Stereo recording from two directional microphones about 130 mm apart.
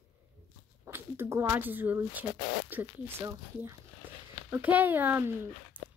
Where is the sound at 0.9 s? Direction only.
15° right (ahead or behind).